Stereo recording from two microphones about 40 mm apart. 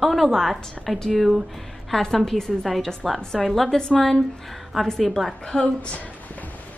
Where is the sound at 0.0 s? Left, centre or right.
Centre.